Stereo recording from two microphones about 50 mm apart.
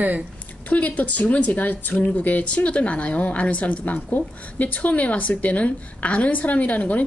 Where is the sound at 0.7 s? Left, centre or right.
Left.